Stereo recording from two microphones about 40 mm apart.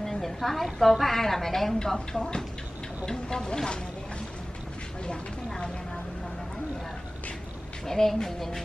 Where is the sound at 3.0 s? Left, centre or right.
Centre.